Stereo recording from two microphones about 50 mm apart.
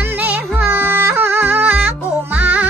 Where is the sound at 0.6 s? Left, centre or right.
Right.